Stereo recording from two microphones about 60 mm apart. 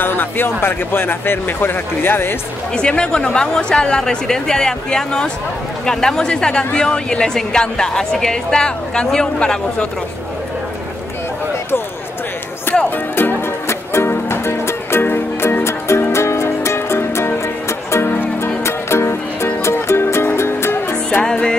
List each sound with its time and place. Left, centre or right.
0.0 s speech: left
2.7 s speech: centre
12.9 s speech: left
13.7 s music: left
18.0 s music: left
18.6 s music: left
21.2 s speech: centre